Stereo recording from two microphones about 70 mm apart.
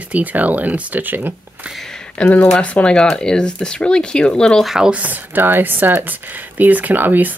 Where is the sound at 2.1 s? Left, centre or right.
Left.